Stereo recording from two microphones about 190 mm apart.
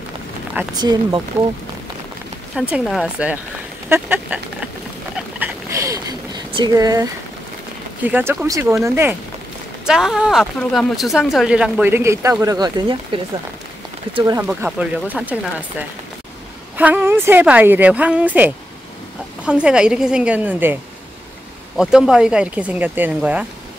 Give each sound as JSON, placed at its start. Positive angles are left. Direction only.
{"t": 0.7, "sound": "speech", "side_deg": -20}
{"t": 2.8, "sound": "a woman's voice", "side_deg": 0}
{"t": 5.1, "sound": "a sound", "side_deg": -10}
{"t": 8.0, "sound": "a woman's voice", "side_deg": -10}
{"t": 16.7, "sound": "a woman's voice", "side_deg": -10}
{"t": 21.7, "sound": "a woman's voice", "side_deg": -5}